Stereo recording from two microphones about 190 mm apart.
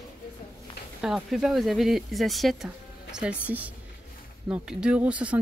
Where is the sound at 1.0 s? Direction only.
5° right (ahead or behind).